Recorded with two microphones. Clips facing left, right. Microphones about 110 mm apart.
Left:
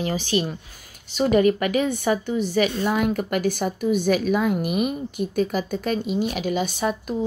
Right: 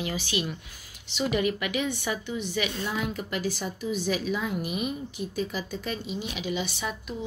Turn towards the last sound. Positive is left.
turn(degrees=45)  # may be behind; listen again after turning